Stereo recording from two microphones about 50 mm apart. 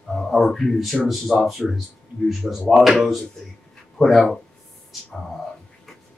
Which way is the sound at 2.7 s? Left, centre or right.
Centre.